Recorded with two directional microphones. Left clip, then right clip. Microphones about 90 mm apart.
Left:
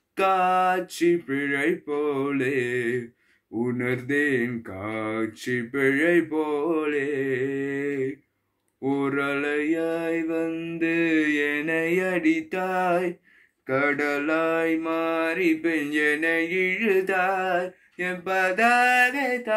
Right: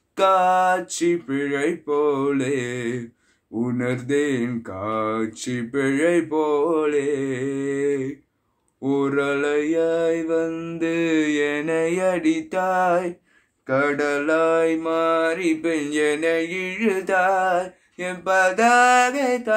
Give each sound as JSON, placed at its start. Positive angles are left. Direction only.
{"t": 0.1, "sound": "mantra", "side_deg": -45}
{"t": 13.7, "sound": "mantra", "side_deg": -25}